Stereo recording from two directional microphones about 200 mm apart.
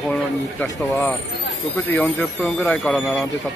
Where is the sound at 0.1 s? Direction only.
5° left (ahead or behind).